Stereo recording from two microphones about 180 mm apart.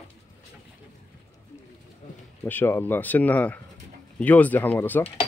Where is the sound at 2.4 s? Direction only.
10° left (ahead or behind).